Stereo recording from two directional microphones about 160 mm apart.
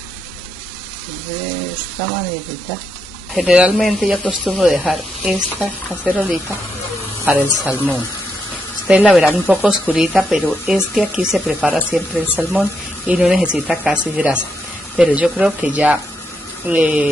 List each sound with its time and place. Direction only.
3.3 s speech: 5° right (ahead or behind)
8.8 s speech: 5° right (ahead or behind)